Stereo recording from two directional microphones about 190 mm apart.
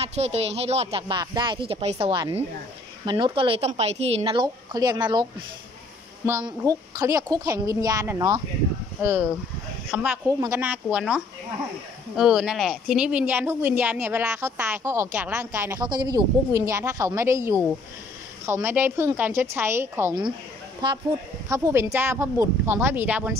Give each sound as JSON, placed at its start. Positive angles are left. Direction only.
{"t": 0.0, "sound": "speech", "side_deg": -35}
{"t": 9.8, "sound": "speech", "side_deg": -5}
{"t": 20.8, "sound": "speech", "side_deg": -25}
{"t": 21.5, "sound": "speech", "side_deg": -15}